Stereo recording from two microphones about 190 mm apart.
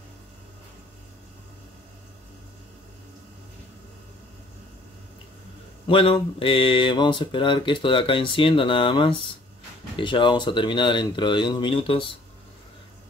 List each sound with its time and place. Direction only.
5.9 s speech: 30° left (ahead or behind)